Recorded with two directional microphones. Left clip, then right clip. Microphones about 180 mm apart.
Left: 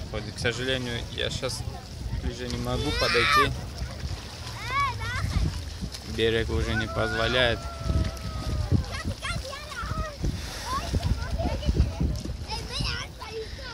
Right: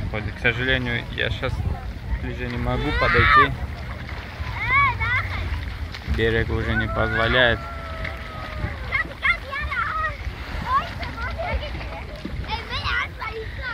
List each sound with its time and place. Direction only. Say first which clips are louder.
0.1 s speech: right 6 dB; 10° left (ahead or behind)
2.8 s speech: right 5 dB; 40° left (ahead or behind)
4.6 s a sound: right 9 dB; 50° left (ahead or behind)
6.1 s speech: right 3 dB; 25° left (ahead or behind)
8.9 s splash: right 12 dB; 55° left (ahead or behind)
11.1 s splash: right 5 dB; 70° left (ahead or behind)
12.4 s a sound: right 6 dB; 70° left (ahead or behind)